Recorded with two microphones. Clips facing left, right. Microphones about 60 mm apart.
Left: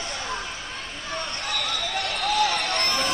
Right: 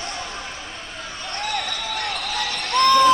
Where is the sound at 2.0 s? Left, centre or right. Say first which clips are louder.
Right 1 dB; right.